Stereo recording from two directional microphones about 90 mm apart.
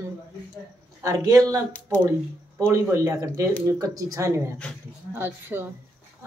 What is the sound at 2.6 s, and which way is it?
A woman's voice, 30° right (ahead or behind).